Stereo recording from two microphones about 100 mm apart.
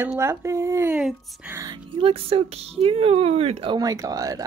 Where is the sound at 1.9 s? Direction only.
70° right (ahead or behind).